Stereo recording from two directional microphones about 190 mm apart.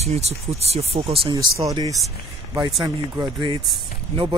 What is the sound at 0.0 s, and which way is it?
Speech, 35° right (ahead or behind).